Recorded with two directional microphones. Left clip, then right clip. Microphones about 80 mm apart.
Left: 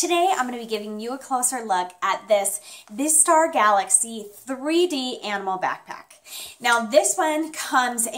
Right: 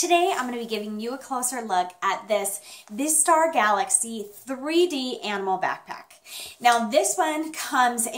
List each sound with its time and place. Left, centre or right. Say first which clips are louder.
0.0 s a woman's voice: left 1 dB; left